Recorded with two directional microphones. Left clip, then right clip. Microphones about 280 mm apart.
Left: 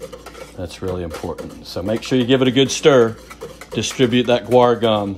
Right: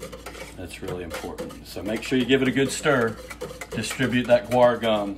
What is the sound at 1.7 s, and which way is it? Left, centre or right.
Speech, left.